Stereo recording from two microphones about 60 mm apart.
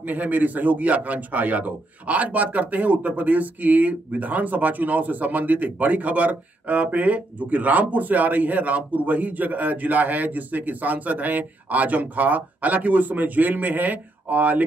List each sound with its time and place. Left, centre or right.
0.0 s a man's voice: right